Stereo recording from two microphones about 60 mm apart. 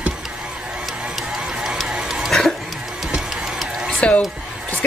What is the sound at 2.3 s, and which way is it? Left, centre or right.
Goat, centre.